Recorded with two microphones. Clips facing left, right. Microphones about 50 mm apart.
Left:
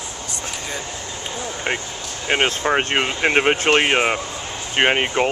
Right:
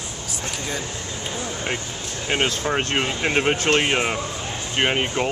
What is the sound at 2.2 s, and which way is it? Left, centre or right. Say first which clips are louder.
Speech: left 4 dB; left.